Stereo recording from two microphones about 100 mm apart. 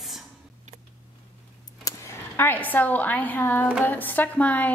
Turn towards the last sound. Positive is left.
turn(degrees=15)  # may be behind; listen again after turning